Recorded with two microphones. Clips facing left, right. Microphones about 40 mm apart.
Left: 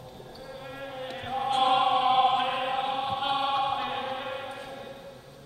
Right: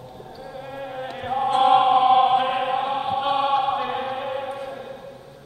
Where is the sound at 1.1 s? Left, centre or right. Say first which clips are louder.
Right 7 dB; centre.